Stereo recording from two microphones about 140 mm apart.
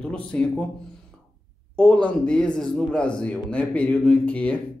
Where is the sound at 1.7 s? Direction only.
10° left (ahead or behind).